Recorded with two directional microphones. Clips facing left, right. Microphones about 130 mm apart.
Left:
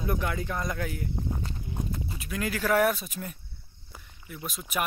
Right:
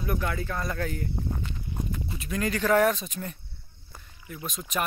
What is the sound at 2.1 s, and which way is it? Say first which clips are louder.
Speech: right 4 dB; 5° left (ahead or behind).